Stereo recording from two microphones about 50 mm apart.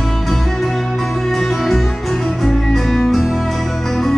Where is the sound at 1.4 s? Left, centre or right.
Centre.